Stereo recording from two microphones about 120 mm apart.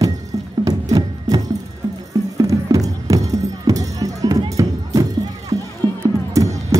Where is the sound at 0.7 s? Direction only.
30° right (ahead or behind).